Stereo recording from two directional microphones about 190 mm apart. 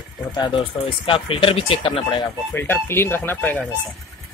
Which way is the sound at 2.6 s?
10° left (ahead or behind).